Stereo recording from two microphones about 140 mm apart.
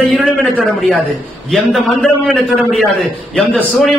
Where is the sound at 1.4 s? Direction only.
Centre (ahead or behind).